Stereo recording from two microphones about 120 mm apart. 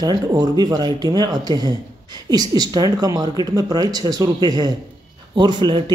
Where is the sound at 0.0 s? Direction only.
35° right (ahead or behind).